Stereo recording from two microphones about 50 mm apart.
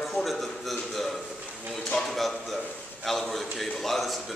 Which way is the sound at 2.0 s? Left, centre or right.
Centre.